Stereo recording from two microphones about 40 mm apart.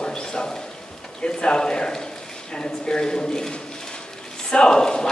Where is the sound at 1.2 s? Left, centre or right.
Left.